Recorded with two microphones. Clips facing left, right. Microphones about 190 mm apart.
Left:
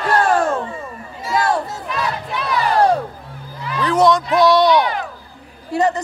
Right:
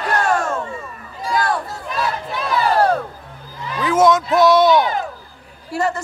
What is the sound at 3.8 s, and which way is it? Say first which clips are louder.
Speech: even; centre (ahead or behind).